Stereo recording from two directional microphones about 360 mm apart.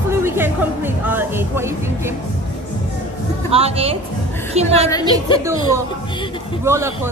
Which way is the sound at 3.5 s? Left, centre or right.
Centre.